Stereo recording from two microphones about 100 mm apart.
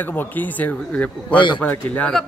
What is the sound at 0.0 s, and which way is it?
Speech, 20° left (ahead or behind).